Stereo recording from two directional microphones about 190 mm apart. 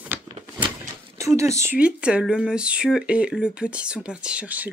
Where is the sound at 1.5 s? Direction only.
10° right (ahead or behind).